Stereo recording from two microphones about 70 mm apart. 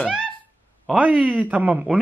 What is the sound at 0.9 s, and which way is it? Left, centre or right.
Speech, right.